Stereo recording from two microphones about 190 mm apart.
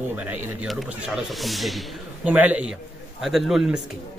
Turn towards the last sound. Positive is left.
turn(degrees=0)  # may be behind; listen again after turning